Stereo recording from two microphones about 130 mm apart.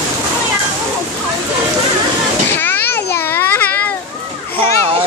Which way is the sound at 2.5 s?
15° left (ahead or behind).